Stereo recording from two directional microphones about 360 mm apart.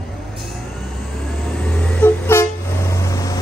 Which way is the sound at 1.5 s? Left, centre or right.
Centre.